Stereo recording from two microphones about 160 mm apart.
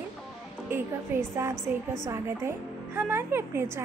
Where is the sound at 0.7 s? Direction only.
15° right (ahead or behind).